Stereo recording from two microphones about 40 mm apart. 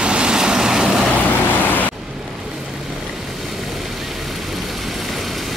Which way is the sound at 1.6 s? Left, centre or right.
Left.